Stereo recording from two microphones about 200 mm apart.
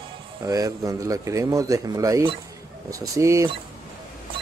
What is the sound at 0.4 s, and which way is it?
Speech, 15° right (ahead or behind).